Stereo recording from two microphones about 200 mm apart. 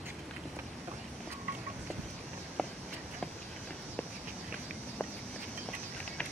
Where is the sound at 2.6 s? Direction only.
5° left (ahead or behind).